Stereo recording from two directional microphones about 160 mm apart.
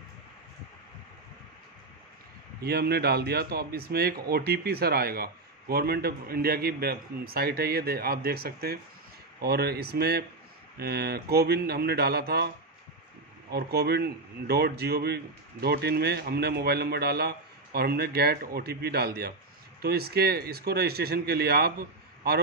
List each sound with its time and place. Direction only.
2.6 s speech: 80° right
9.4 s a man's voice: 80° right